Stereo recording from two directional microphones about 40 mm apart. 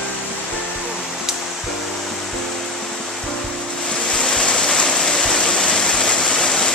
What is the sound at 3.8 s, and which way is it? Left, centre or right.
Waterfall, centre.